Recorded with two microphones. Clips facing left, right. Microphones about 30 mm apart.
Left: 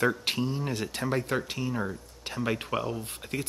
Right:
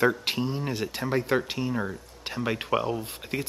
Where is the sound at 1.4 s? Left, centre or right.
Right.